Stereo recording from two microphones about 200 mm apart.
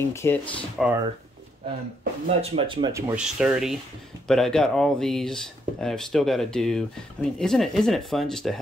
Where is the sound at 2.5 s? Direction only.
25° right (ahead or behind).